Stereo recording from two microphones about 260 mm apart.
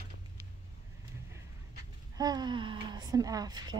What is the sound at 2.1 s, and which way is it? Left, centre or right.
Speech, centre.